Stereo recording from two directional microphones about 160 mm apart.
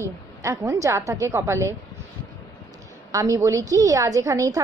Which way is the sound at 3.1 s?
20° right (ahead or behind).